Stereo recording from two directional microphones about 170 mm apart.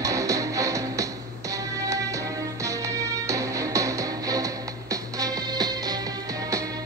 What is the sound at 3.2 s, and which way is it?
Music, 20° right (ahead or behind).